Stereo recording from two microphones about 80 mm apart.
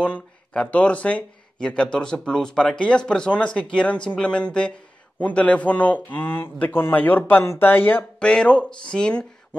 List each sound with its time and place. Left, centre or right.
0.0 s speech: centre
8.2 s speech: centre